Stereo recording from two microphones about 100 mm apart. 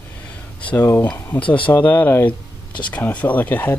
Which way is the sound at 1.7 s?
20° left (ahead or behind).